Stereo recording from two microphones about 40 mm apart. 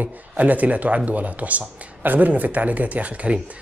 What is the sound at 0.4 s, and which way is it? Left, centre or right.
A man's voice, right.